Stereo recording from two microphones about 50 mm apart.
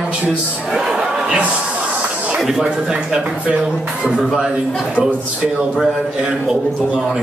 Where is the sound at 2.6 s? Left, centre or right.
Centre.